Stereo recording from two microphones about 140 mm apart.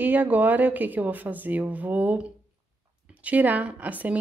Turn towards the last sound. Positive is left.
turn(degrees=-10)  # may be behind; listen again after turning